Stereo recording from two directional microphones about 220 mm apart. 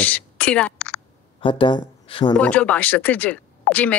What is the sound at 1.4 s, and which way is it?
Speech, 20° left (ahead or behind).